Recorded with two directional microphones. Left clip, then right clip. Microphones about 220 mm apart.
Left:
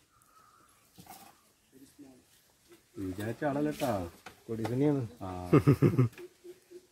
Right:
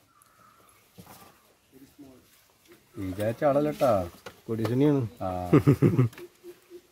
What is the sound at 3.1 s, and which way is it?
Speech, 50° right (ahead or behind).